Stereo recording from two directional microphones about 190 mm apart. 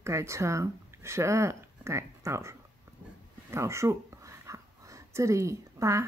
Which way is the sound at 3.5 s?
15° right (ahead or behind).